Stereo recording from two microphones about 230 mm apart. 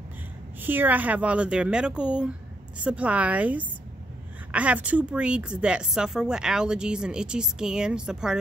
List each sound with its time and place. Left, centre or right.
0.6 s speech: centre